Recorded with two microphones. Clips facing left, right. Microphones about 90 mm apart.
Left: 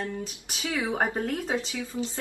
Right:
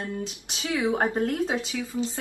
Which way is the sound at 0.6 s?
20° right (ahead or behind).